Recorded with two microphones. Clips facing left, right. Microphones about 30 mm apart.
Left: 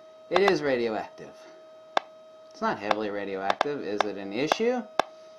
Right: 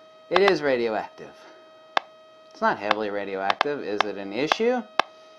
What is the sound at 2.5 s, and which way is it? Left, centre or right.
Speech, centre.